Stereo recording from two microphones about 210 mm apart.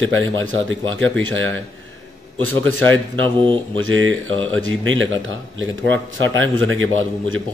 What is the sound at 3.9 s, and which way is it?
Speech, 70° right (ahead or behind).